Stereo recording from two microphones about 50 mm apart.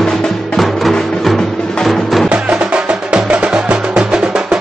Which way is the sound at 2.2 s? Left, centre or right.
Right.